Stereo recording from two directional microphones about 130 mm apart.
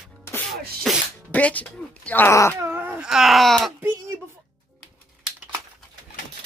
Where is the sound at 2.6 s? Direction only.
15° right (ahead or behind).